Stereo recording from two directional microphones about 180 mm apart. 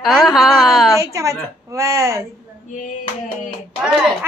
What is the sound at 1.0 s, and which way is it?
A child's voice, 15° right (ahead or behind).